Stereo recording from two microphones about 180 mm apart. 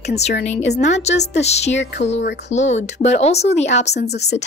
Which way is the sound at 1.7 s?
80° left.